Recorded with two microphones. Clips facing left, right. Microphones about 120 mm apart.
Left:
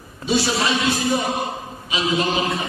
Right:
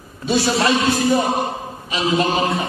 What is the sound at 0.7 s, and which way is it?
Chant, 50° right (ahead or behind).